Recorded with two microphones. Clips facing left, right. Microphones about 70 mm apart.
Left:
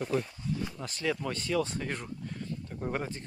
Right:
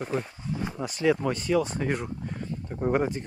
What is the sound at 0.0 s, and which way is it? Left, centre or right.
Speech, right.